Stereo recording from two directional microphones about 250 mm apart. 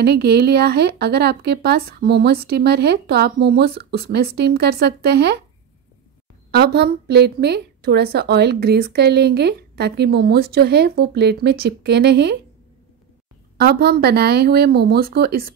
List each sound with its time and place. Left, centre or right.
0.0 s a woman's voice: right
6.5 s a woman's voice: right
13.6 s a woman's voice: right